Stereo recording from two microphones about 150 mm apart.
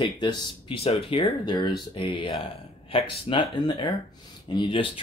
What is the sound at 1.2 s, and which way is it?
Speech, 30° left (ahead or behind).